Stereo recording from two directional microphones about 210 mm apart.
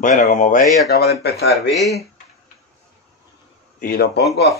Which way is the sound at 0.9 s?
50° left (ahead or behind).